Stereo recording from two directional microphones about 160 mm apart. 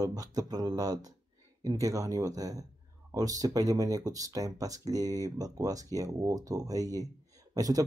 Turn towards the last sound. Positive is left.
turn(degrees=-25)  # may be behind; listen again after turning